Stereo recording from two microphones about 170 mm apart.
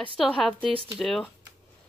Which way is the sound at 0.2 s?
5° left (ahead or behind).